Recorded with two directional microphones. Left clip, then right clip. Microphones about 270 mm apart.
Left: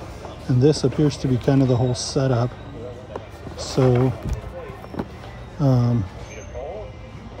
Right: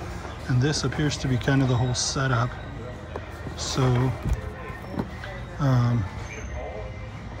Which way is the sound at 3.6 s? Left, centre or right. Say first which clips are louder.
Left 7 dB; left.